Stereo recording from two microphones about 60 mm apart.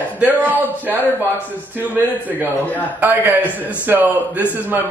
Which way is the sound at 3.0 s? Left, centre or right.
Right.